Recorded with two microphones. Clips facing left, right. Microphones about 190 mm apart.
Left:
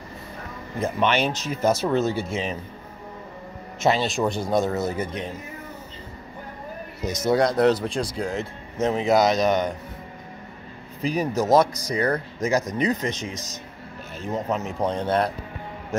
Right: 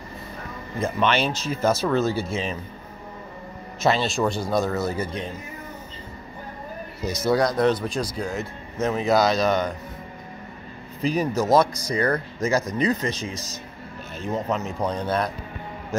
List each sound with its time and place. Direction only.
0.7 s speech: 15° left (ahead or behind)
3.8 s speech: 15° left (ahead or behind)
7.2 s speech: 25° left (ahead or behind)
11.0 s speech: 10° left (ahead or behind)
14.8 s speech: 25° left (ahead or behind)